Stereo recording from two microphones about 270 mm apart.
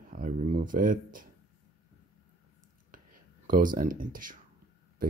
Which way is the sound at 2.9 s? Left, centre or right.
Right.